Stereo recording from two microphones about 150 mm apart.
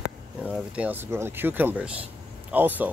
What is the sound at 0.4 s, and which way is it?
Speech, 5° right (ahead or behind).